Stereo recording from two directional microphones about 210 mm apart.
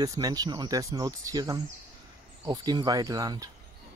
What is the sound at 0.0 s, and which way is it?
Speech, 20° right (ahead or behind).